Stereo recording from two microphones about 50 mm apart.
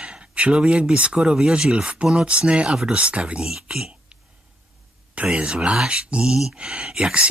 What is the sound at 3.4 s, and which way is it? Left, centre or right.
Speech, centre.